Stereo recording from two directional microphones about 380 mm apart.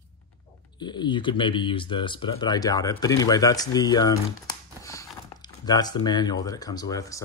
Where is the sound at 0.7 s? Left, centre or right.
Centre.